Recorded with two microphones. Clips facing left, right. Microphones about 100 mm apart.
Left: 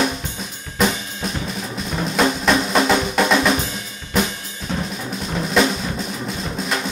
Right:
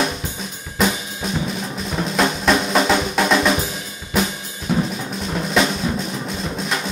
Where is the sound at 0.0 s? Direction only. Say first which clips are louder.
Left 1 dB; centre (ahead or behind).